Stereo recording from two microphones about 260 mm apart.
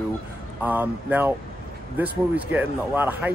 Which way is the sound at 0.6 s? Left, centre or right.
Centre.